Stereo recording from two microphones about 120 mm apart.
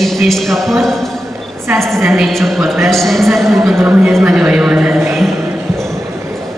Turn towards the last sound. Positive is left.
turn(degrees=0)  # may be behind; listen again after turning